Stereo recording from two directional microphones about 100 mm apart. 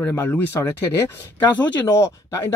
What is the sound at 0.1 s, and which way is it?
Speech, 20° left (ahead or behind).